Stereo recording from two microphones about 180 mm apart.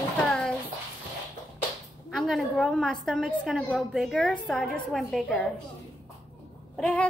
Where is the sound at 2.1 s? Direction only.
Centre (ahead or behind).